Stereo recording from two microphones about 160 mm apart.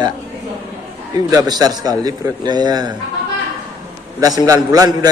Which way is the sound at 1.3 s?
25° right (ahead or behind).